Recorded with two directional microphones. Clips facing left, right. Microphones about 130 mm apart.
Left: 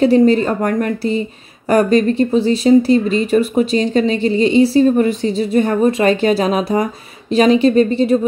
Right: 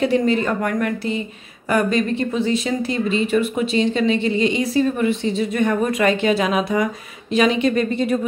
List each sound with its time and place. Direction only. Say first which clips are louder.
0.0 s speech: left 7 dB; 35° left (ahead or behind)